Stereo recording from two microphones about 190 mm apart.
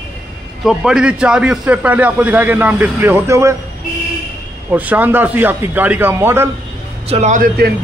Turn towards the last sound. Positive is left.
turn(degrees=-45)  # may be behind; listen again after turning